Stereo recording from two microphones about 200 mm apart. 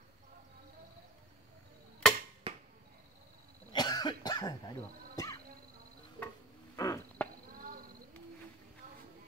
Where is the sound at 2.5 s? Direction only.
25° right (ahead or behind).